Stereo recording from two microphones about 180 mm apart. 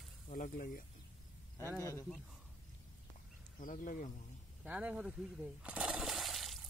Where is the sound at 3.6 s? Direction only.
50° left (ahead or behind).